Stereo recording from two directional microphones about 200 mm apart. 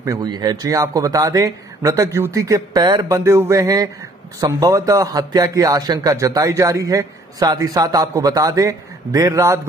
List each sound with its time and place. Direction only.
0.0 s speech: 20° right (ahead or behind)